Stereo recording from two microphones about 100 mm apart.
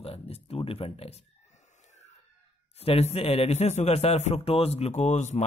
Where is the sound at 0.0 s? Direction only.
80° left.